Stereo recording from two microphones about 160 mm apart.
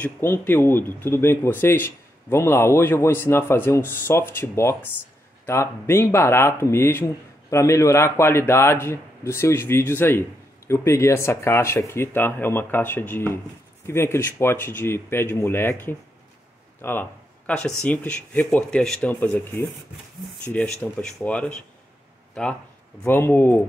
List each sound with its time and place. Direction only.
0.0 s speech: 10° left (ahead or behind)
20.4 s speech: 10° left (ahead or behind)